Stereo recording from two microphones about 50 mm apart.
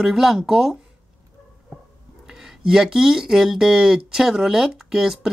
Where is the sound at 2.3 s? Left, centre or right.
Centre.